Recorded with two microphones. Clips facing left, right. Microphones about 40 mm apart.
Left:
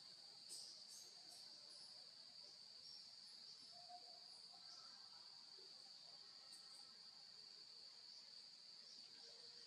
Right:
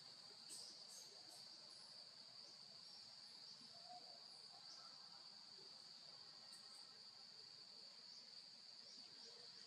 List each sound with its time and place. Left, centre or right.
3.9 s cricket: right